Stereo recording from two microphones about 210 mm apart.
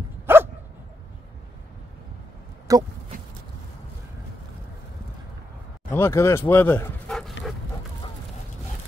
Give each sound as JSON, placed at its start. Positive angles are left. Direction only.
{"t": 0.3, "sound": "dog", "side_deg": -10}
{"t": 2.7, "sound": "speech", "side_deg": -15}
{"t": 3.1, "sound": "a sound", "side_deg": -40}
{"t": 5.9, "sound": "speech", "side_deg": 10}